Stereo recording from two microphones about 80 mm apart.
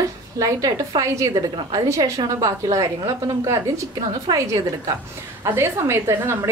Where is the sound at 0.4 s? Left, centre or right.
Right.